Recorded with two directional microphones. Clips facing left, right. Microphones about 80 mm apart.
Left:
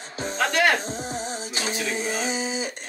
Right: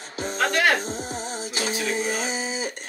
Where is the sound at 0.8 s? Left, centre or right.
Left.